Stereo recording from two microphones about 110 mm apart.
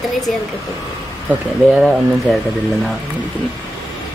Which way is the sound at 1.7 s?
5° right (ahead or behind).